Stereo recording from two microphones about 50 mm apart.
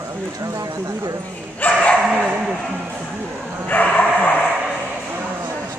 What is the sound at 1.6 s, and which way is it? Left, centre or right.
Bow-wow, left.